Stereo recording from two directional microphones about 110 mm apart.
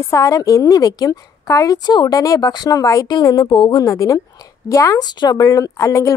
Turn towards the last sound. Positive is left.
turn(degrees=30)  # may be behind; listen again after turning